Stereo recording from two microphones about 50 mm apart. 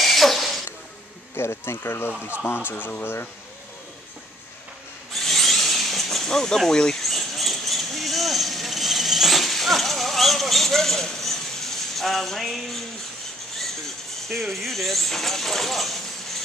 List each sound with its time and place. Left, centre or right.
0.0 s rodents: centre
1.3 s speech: left
2.7 s speech: left
5.1 s a sound: centre
6.7 s speech: centre
7.0 s a sound: centre
14.3 s speech: centre